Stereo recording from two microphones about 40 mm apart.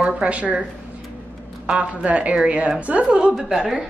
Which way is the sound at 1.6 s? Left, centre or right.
Right.